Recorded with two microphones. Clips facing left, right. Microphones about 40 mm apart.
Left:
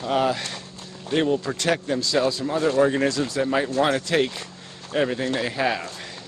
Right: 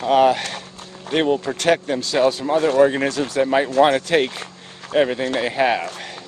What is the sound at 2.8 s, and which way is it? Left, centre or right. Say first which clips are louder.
Speech: right 3 dB; right.